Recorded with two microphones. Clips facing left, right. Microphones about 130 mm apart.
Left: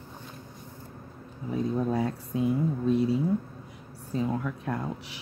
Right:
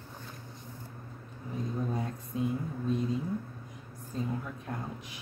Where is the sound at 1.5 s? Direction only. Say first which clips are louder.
Left 7 dB; 80° left.